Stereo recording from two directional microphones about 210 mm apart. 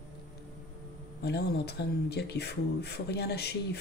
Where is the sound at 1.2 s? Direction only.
55° left (ahead or behind).